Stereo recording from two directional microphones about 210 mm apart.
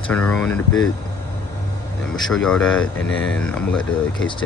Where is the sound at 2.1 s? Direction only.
Centre (ahead or behind).